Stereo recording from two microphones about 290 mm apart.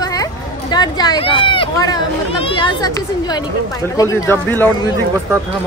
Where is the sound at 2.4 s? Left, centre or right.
Centre.